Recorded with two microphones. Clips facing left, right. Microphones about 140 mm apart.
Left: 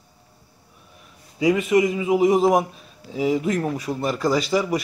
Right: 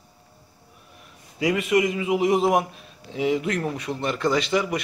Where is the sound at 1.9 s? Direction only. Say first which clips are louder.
Left 3 dB; 35° left (ahead or behind).